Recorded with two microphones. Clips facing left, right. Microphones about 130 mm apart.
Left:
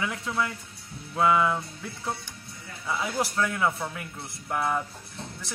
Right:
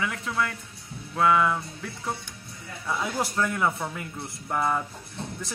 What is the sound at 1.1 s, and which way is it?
Music, 15° left (ahead or behind).